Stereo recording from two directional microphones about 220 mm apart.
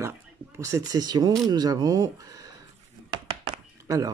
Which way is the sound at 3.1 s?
15° right (ahead or behind).